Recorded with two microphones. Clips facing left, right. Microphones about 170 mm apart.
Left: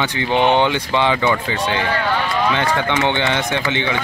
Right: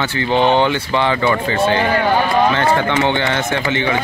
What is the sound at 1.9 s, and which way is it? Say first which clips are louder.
Speech: right 5 dB; 30° right (ahead or behind).